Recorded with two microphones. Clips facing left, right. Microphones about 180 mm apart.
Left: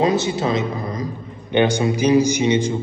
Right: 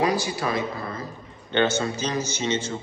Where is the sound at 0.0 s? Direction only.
25° left (ahead or behind).